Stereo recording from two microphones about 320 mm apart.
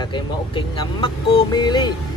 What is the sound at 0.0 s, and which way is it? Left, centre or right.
Speech, centre.